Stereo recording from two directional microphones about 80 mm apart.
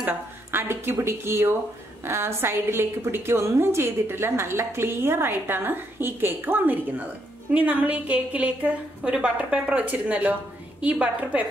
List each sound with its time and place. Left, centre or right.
0.0 s a woman's voice: right